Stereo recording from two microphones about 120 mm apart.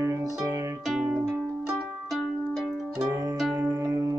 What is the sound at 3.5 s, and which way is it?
Music, 25° right (ahead or behind).